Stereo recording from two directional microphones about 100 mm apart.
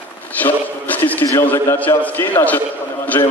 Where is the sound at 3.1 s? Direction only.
30° left (ahead or behind).